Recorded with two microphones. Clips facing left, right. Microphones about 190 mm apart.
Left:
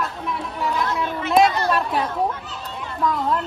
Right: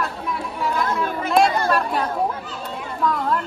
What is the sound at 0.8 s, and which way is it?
Speech, 50° right (ahead or behind).